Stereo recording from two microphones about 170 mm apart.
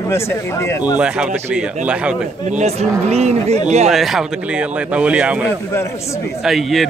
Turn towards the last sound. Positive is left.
turn(degrees=0)  # may be behind; listen again after turning